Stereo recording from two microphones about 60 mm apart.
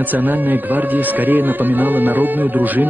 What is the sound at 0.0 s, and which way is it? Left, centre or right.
Speech, right.